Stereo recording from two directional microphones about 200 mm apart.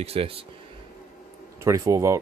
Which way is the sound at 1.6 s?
15° right (ahead or behind).